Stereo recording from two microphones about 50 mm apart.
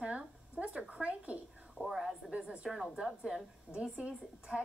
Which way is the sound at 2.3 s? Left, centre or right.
Centre.